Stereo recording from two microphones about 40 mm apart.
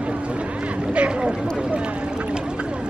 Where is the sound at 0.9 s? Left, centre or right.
Right.